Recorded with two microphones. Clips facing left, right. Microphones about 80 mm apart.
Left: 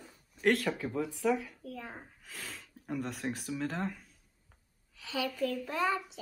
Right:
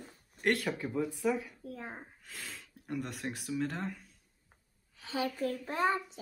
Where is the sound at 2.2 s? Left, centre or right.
Centre.